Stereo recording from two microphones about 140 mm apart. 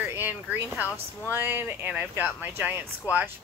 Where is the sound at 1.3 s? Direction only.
15° right (ahead or behind).